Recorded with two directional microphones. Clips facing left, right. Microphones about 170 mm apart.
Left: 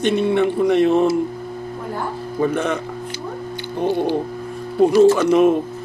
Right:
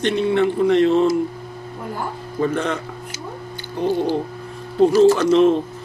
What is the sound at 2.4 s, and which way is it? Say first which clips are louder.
Speech: left 1 dB; 10° left (ahead or behind).